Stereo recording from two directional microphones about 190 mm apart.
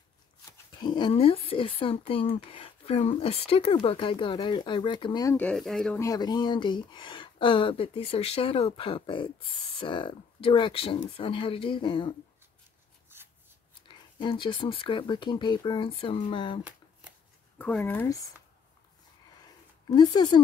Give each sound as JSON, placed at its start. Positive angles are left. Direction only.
{"t": 0.5, "sound": "speech", "side_deg": 25}
{"t": 5.3, "sound": "speech", "side_deg": 5}
{"t": 5.9, "sound": "speech", "side_deg": 20}
{"t": 13.8, "sound": "speech", "side_deg": 25}
{"t": 17.6, "sound": "speech", "side_deg": 10}
{"t": 20.0, "sound": "speech", "side_deg": 20}